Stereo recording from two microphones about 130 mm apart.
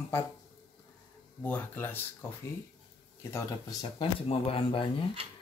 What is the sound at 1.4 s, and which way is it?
Speech, 15° left (ahead or behind).